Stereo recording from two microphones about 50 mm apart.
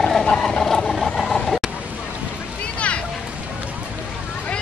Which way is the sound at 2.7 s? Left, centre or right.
Left.